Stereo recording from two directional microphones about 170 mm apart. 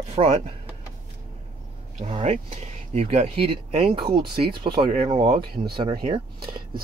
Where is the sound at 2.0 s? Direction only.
35° right (ahead or behind).